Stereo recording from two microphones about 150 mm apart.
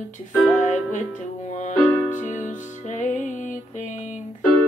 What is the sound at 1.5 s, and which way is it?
Music, 55° left (ahead or behind).